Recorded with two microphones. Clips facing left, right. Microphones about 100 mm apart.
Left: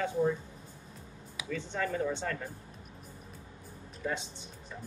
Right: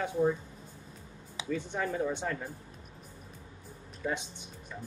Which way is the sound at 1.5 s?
10° right (ahead or behind).